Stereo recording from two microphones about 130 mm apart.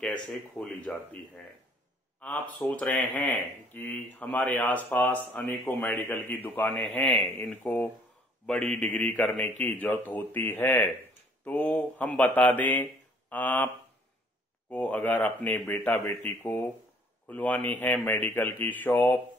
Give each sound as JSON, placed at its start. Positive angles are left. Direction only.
{"t": 0.0, "sound": "speech", "side_deg": 5}
{"t": 14.7, "sound": "speech", "side_deg": 10}